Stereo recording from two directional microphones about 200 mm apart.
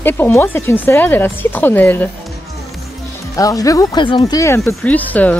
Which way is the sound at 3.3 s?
15° left (ahead or behind).